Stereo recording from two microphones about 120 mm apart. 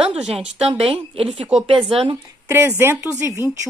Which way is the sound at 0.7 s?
50° right (ahead or behind).